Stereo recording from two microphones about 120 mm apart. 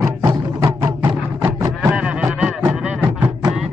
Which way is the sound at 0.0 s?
25° right (ahead or behind).